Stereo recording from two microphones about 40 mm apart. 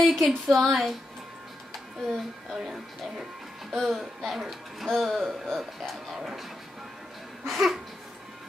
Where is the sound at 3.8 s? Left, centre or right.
Centre.